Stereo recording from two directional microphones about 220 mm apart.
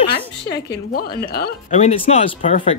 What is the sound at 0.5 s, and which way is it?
Speech, 45° left (ahead or behind).